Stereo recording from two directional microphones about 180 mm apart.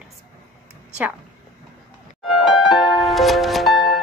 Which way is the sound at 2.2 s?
Centre (ahead or behind).